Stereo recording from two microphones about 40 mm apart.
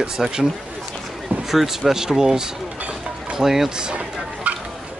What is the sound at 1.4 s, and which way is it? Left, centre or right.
Speech, centre.